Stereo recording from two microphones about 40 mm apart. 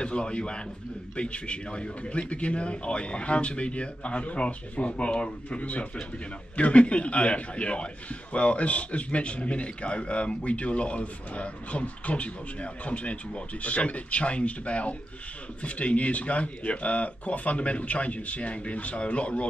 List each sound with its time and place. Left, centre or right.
0.0 s a man's voice: left